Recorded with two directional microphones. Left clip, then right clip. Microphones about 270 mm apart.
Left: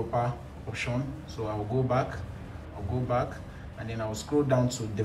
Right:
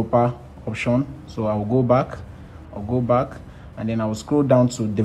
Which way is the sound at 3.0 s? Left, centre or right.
Centre.